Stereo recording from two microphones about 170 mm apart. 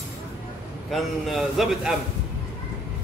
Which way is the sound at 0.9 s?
Centre (ahead or behind).